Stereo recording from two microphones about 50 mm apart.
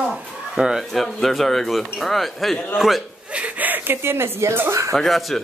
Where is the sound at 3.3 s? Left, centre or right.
Right.